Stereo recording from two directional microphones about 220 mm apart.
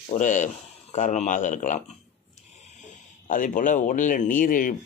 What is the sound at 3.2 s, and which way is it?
Speech, 40° left (ahead or behind).